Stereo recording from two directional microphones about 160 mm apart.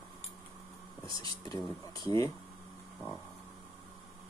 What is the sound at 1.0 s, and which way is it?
Speech, 30° right (ahead or behind).